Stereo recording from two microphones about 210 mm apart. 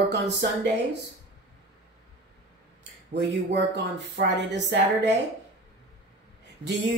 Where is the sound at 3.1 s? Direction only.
55° right (ahead or behind).